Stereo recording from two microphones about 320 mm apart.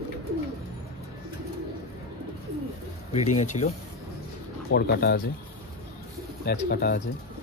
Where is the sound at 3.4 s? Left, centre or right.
Left.